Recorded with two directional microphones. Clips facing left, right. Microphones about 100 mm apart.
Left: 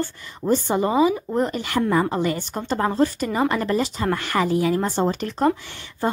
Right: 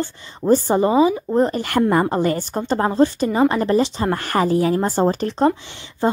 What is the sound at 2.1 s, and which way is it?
Speech, 45° right (ahead or behind).